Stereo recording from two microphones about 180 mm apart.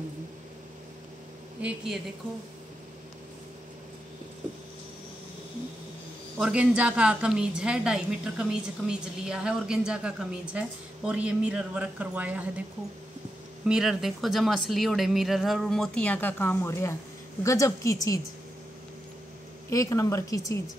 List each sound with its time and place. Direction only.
1.6 s speech: 5° right (ahead or behind)
6.3 s a woman's voice: 5° right (ahead or behind)
13.7 s a woman's voice: 5° right (ahead or behind); by 17.9 s 15° left (ahead or behind)
19.7 s speech: 15° left (ahead or behind)